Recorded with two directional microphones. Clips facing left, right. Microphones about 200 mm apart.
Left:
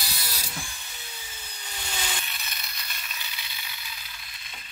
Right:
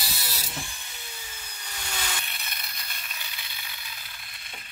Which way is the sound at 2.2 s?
55° right (ahead or behind).